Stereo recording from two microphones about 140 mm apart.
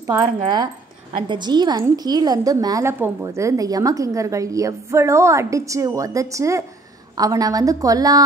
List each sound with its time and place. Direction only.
0.0 s a woman's voice: 25° right (ahead or behind)